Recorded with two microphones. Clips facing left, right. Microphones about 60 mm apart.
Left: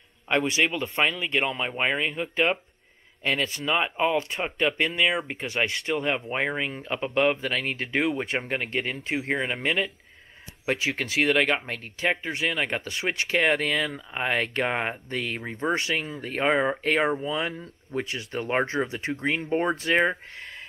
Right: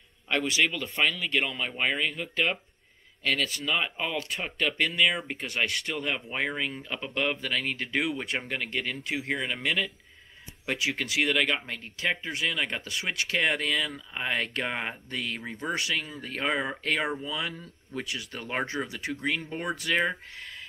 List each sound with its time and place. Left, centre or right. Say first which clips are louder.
0.3 s speech: left 3 dB; left